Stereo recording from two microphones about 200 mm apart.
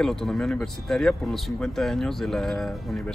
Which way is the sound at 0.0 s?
Centre (ahead or behind).